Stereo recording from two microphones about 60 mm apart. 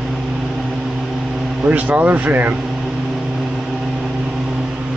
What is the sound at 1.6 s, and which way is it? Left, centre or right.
Speech, right.